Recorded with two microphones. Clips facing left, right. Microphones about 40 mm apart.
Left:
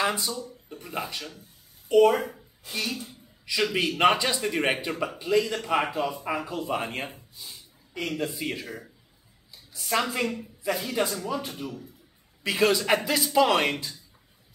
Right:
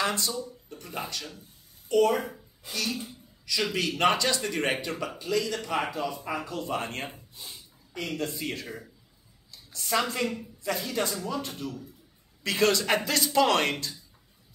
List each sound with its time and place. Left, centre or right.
0.0 s a man's voice: centre
3.1 s a sound: centre
4.0 s a man's voice: centre